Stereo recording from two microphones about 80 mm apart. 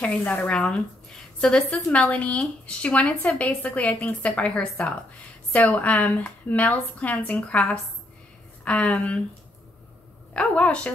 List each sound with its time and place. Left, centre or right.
0.2 s a woman's voice: centre
10.3 s a woman's voice: centre